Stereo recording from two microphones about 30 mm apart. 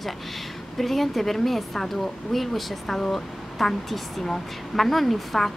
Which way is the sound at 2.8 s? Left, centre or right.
Centre.